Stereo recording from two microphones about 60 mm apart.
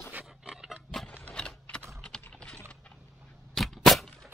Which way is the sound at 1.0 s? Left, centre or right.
Left.